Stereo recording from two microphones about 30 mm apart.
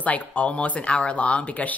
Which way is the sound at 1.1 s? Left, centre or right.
Left.